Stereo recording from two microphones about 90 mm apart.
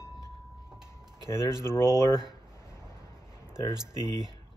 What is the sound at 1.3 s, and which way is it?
Speech, 50° right (ahead or behind).